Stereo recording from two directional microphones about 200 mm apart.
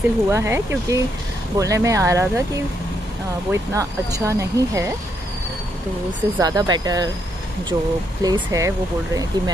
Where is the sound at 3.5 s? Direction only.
15° right (ahead or behind).